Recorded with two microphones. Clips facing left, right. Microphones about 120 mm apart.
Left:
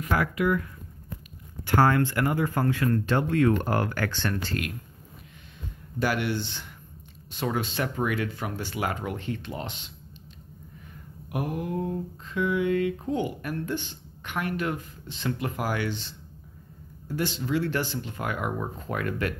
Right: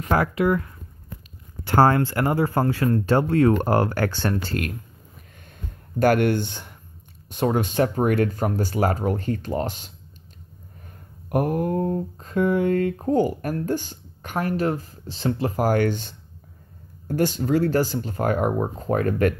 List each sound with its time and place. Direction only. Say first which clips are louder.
0.0 s speech: right 5 dB; 40° right (ahead or behind)
1.8 s speech: right 4 dB; 35° right (ahead or behind)
5.9 s speech: right 8 dB; 50° right (ahead or behind)
11.2 s speech: right 8 dB; 45° right (ahead or behind)